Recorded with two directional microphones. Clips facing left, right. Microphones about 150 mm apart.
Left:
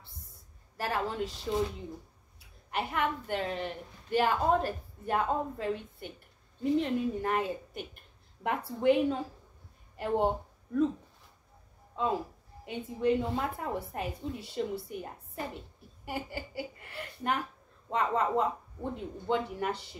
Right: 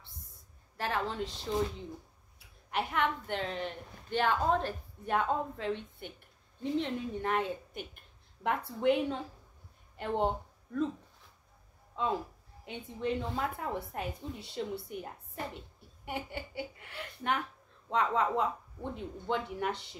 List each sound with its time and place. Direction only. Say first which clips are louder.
0.7 s a woman's voice: left 2 dB; 5° left (ahead or behind)
2.3 s a woman's voice: even; centre (ahead or behind)
11.9 s a sound: left 2 dB; 5° left (ahead or behind)
12.6 s a woman's voice: left 6 dB; 5° left (ahead or behind)